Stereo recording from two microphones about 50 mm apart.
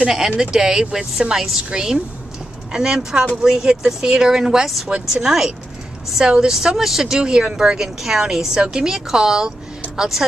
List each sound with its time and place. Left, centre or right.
0.4 s speech: centre